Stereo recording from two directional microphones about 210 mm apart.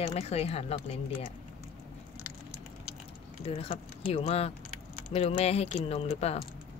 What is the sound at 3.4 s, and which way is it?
Speech, 30° left (ahead or behind).